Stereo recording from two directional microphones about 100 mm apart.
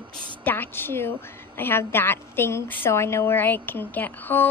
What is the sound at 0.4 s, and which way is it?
A woman's voice, 20° left (ahead or behind).